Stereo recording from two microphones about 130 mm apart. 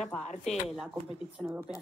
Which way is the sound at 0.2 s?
65° left (ahead or behind).